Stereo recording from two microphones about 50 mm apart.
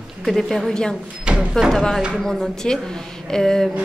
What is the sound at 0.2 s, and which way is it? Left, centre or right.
Speech, centre.